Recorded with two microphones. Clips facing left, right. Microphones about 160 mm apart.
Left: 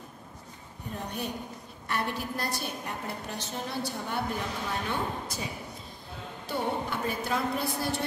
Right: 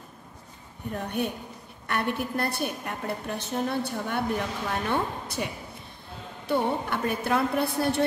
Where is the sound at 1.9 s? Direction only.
60° right (ahead or behind).